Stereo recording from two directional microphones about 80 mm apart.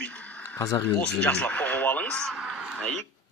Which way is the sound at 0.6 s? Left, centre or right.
Left.